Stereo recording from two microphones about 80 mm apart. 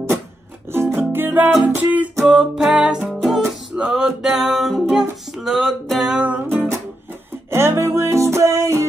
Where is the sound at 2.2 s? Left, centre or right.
Centre.